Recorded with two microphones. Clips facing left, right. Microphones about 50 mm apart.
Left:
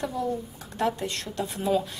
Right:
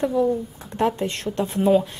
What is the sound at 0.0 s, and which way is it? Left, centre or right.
A woman's voice, right.